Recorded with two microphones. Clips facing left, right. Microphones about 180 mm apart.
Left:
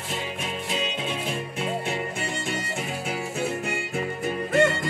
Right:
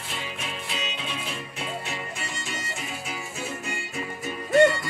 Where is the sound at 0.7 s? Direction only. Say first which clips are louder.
Left 7 dB; 45° left (ahead or behind).